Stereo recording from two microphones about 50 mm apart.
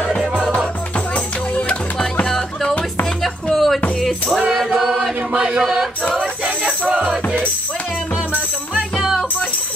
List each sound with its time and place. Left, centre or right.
0.1 s music: centre
0.9 s music: left
2.2 s music: centre
4.4 s chant: centre
4.7 s choir: centre
6.9 s music: right
9.0 s music: centre